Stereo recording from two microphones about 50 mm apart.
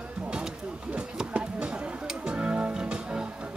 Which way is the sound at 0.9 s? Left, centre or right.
Right.